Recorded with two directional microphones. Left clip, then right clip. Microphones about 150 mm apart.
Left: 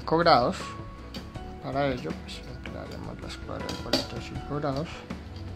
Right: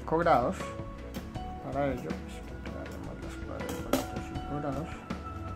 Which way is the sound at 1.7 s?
25° left (ahead or behind).